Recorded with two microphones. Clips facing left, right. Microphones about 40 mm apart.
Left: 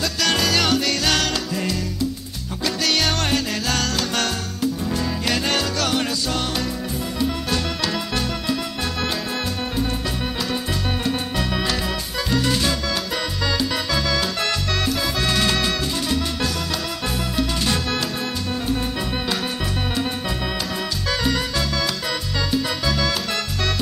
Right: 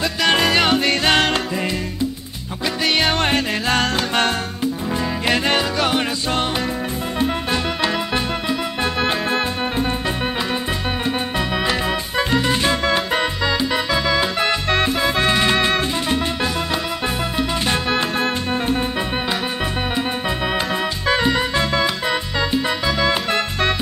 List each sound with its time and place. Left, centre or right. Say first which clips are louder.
0.2 s music: right 4 dB; right
7.5 s music: right 3 dB; right
9.0 s organ: right 6 dB; right
11.1 s music: right 3 dB; right
13.5 s music: right 3 dB; right
17.4 s music: right 1 dB; right
21.1 s music: right 5 dB; right